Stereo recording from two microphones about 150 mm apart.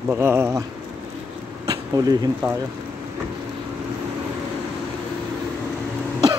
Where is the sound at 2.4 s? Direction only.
30° right (ahead or behind).